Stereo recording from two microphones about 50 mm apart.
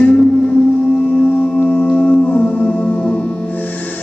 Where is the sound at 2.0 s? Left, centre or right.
Left.